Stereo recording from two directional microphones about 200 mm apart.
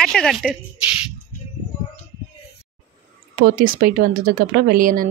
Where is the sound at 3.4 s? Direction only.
45° right (ahead or behind).